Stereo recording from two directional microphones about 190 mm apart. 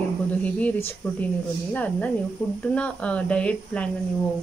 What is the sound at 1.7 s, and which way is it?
Speech, 10° left (ahead or behind).